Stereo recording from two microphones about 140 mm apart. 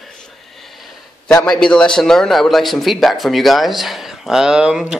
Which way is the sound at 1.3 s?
5° left (ahead or behind).